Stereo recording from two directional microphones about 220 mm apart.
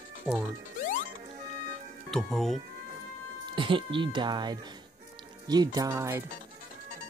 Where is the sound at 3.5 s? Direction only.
20° right (ahead or behind).